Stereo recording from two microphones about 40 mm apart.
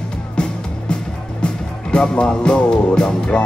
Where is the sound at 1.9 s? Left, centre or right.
Left.